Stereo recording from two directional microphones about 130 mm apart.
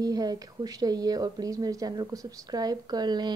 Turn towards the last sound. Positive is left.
turn(degrees=-35)  # may be behind; listen again after turning